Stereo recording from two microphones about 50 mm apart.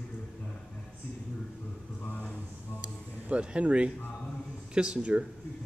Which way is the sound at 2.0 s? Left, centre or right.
Left.